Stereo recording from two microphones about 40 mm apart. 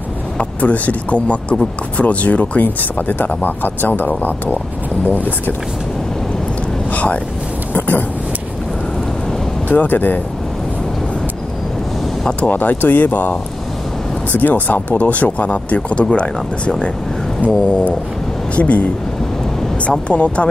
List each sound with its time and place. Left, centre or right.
0.4 s speech: left
2.6 s speech: left
6.9 s boat: left
7.7 s a sound: left
9.7 s speech: left
12.3 s speech: left
18.6 s speech: left
19.9 s speech: left